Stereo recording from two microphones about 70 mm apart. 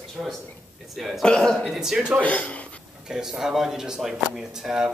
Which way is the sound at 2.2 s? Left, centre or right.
Centre.